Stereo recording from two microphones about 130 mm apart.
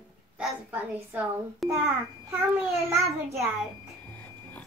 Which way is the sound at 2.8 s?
20° right (ahead or behind).